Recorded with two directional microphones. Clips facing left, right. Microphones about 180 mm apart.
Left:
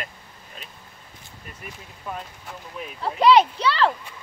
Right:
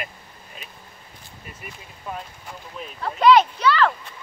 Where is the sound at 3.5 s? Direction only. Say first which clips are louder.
Right 2 dB; 30° left (ahead or behind).